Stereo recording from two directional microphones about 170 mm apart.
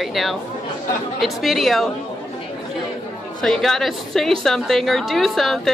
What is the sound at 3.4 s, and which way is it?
A woman's voice, centre (ahead or behind).